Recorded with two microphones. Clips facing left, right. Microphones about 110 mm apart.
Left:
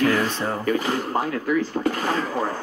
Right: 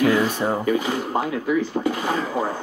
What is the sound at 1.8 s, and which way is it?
Speech, 15° right (ahead or behind).